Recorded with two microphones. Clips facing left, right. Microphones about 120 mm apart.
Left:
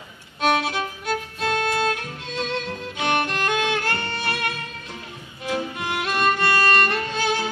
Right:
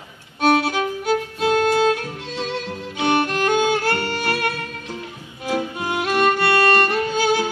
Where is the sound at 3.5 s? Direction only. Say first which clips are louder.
Right 5 dB; 40° right (ahead or behind).